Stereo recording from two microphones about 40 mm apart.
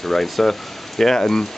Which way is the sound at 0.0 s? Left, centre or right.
Centre.